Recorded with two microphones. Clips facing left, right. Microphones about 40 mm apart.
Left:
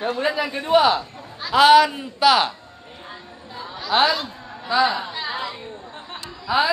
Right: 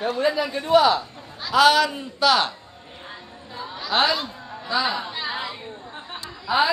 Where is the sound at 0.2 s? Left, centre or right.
Left.